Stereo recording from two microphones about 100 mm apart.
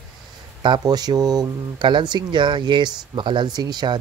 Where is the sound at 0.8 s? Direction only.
40° right (ahead or behind).